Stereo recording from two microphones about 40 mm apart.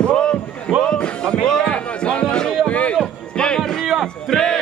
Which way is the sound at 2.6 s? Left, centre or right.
Left.